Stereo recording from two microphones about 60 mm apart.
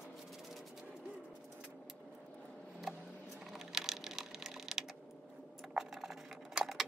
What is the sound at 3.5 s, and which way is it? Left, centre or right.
Splinter, centre.